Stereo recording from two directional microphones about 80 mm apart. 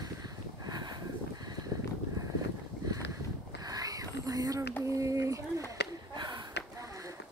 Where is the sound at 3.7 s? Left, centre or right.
Right.